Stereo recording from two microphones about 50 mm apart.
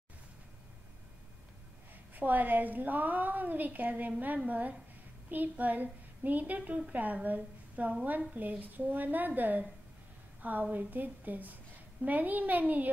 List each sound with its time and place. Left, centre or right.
2.1 s a woman's voice: right
8.4 s a woman's voice: right